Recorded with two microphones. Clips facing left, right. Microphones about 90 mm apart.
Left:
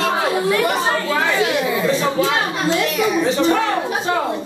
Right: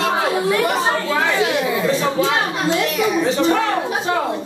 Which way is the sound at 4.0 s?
5° right (ahead or behind).